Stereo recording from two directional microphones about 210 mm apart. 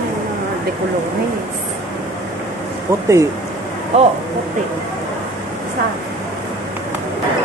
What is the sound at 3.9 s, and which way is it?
Speech, 30° right (ahead or behind).